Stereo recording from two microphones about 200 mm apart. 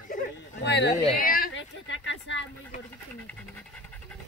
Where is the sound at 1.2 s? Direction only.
45° left (ahead or behind).